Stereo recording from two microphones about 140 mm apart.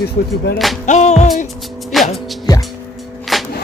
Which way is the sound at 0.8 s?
55° left (ahead or behind).